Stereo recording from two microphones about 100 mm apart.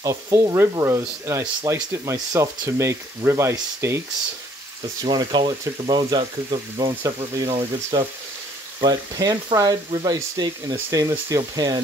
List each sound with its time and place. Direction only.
0.0 s frying: 35° right (ahead or behind)
5.0 s speech: 50° right (ahead or behind)
7.0 s speech: 30° right (ahead or behind)
7.4 s speech: 55° right (ahead or behind)
8.8 s speech: 40° right (ahead or behind)